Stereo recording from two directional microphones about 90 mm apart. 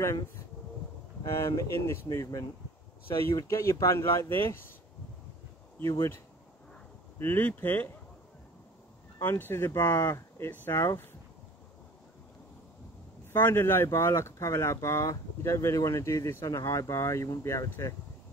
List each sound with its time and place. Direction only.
1.2 s speech: 30° left (ahead or behind)
5.9 s speech: 30° left (ahead or behind)
9.2 s speech: 25° left (ahead or behind)
13.3 s speech: 25° left (ahead or behind)